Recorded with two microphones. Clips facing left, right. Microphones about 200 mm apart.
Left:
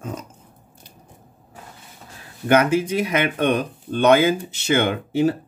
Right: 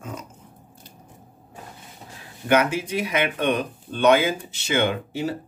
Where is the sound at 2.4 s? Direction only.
45° left (ahead or behind).